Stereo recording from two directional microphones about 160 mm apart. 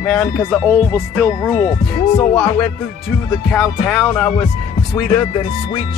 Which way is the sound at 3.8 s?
5° right (ahead or behind).